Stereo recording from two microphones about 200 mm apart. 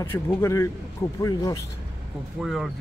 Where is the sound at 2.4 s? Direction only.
Centre (ahead or behind).